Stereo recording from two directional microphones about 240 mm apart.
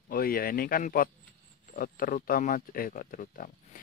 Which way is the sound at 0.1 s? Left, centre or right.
Left.